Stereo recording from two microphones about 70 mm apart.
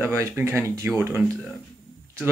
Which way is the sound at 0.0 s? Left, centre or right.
Right.